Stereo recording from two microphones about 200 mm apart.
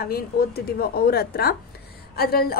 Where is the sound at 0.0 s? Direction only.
50° left (ahead or behind).